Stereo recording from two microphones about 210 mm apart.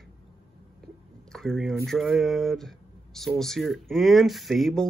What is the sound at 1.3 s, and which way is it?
Speech, centre (ahead or behind).